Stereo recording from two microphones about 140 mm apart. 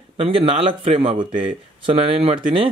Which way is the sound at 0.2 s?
45° right (ahead or behind).